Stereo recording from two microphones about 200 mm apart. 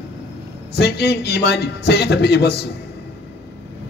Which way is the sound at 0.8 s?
55° left (ahead or behind).